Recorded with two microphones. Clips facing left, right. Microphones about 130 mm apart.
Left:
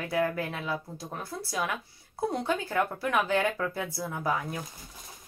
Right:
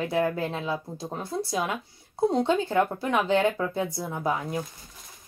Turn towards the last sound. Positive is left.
turn(degrees=-20)  # may be behind; listen again after turning